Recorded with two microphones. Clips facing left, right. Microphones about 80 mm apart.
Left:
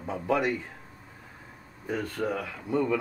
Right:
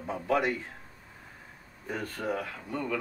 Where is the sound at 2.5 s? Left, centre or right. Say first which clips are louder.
Left 7 dB; centre.